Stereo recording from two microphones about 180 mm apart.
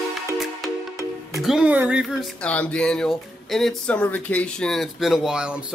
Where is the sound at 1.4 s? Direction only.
Centre (ahead or behind).